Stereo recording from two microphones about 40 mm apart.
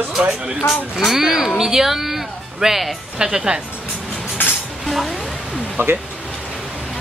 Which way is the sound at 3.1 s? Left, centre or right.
Centre.